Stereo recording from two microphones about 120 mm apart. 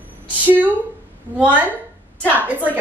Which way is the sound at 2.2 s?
15° right (ahead or behind).